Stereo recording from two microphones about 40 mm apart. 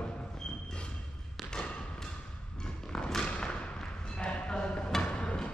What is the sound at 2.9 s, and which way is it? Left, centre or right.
Thump, centre.